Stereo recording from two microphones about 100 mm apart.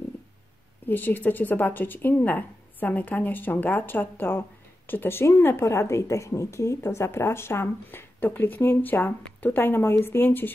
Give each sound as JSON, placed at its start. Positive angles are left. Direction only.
{"t": 0.8, "sound": "speech", "side_deg": 20}